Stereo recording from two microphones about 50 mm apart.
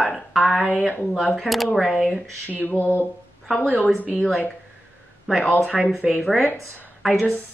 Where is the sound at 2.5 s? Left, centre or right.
Left.